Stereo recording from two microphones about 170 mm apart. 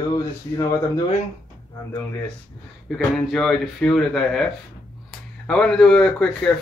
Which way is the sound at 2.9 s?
Centre (ahead or behind).